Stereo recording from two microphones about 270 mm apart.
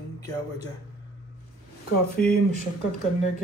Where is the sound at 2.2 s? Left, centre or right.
Left.